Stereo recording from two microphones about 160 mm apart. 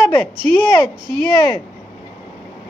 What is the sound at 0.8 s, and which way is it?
Speech, 30° right (ahead or behind).